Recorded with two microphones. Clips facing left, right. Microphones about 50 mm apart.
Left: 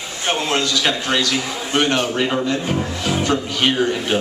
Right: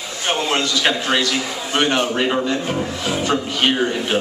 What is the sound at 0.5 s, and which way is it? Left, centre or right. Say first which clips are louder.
A man's voice: right 1 dB; centre.